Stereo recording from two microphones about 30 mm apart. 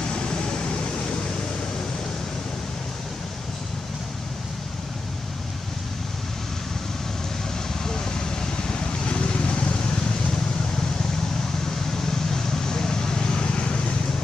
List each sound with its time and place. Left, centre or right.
0.0 s vehicle: left
7.8 s vehicle: centre
11.9 s vehicle: centre; by 13.9 s left